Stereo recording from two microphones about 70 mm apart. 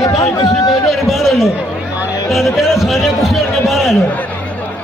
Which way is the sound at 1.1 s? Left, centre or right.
Centre.